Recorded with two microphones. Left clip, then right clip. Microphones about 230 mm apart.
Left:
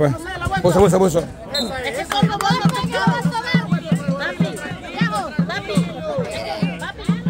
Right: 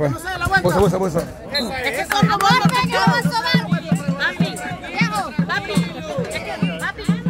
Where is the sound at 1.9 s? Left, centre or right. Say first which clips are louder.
Right 1 dB; right.